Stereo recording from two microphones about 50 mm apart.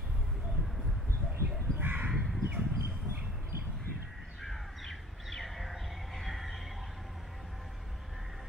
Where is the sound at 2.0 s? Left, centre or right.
Centre.